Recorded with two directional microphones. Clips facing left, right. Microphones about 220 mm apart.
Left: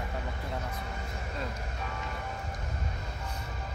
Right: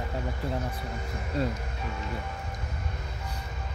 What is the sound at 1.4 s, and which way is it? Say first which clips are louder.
Speech: right 9 dB; 35° right (ahead or behind).